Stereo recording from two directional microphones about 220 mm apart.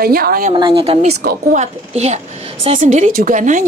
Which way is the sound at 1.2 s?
45° right (ahead or behind).